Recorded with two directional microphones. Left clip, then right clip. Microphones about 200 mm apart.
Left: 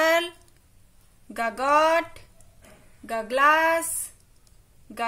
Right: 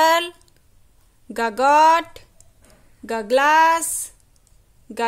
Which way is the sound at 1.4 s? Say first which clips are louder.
Right 7 dB; 55° right (ahead or behind).